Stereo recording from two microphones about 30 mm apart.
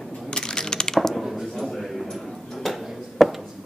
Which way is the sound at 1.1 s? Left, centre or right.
Centre.